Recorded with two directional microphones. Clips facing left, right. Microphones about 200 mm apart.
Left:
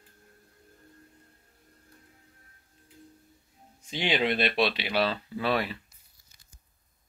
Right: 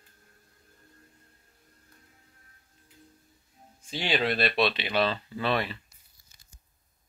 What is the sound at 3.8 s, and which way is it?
Speech, 20° left (ahead or behind).